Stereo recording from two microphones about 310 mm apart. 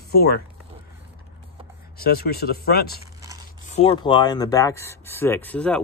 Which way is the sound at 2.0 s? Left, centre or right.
Left.